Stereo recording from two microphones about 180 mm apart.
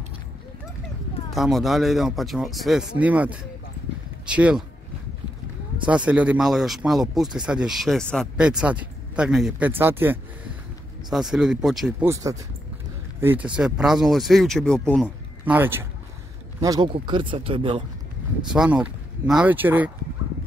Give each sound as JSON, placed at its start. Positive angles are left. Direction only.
{"t": 1.3, "sound": "speech", "side_deg": 0}
{"t": 5.9, "sound": "speech", "side_deg": -5}
{"t": 12.0, "sound": "speech", "side_deg": -15}
{"t": 15.4, "sound": "speech", "side_deg": -10}
{"t": 16.6, "sound": "speech", "side_deg": -25}
{"t": 18.5, "sound": "speech", "side_deg": -5}